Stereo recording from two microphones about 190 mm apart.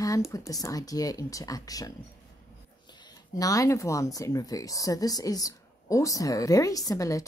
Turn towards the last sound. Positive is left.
turn(degrees=15)  # may be behind; listen again after turning